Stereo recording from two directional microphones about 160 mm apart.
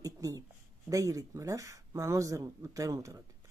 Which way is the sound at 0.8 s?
20° right (ahead or behind).